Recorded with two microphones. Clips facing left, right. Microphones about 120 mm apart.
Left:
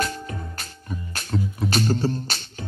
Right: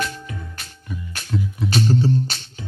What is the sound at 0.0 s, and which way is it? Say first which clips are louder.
Music: left 1 dB; 40° left (ahead or behind).